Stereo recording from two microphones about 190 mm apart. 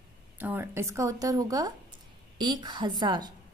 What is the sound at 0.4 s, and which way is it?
A woman's voice, 10° right (ahead or behind).